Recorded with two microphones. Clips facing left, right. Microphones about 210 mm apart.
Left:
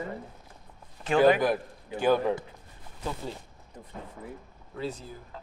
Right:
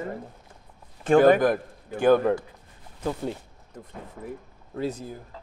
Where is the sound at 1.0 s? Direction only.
50° right (ahead or behind).